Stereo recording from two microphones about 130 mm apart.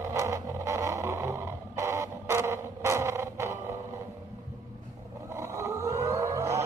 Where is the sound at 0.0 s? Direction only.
25° right (ahead or behind).